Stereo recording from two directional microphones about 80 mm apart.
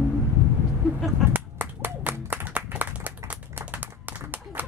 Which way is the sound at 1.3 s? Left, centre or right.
Right.